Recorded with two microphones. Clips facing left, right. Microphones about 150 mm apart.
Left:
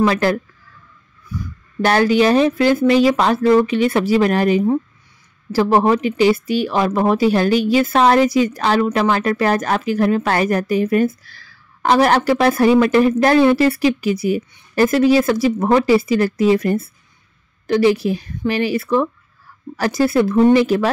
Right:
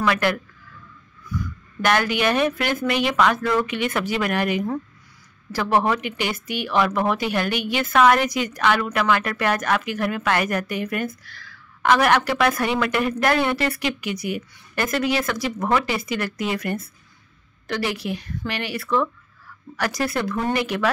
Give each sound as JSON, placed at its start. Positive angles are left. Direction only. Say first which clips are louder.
{"t": 0.0, "sound": "speech", "louder": "left 6 dB", "side_deg": 30}
{"t": 1.8, "sound": "a woman's voice", "louder": "left 7 dB", "side_deg": 35}